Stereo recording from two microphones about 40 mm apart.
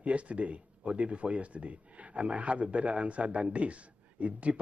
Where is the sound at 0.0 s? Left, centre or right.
Right.